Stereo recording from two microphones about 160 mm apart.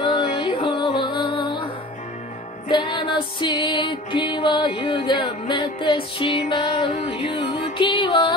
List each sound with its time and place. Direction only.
0.0 s music: 30° left (ahead or behind)
2.7 s music: 30° left (ahead or behind)